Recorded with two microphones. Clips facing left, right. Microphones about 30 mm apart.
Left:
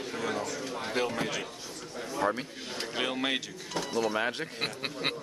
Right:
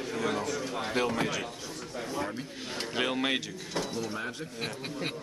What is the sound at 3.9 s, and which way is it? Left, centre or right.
Speech, left.